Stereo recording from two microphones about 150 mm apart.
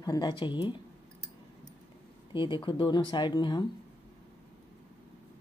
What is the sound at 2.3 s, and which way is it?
Speech, 35° left (ahead or behind).